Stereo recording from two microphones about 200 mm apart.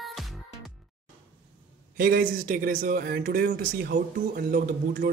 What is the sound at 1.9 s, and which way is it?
Speech, 45° right (ahead or behind).